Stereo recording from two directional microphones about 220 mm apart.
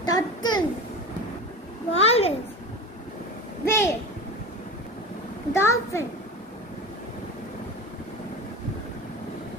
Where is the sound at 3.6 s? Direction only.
10° left (ahead or behind).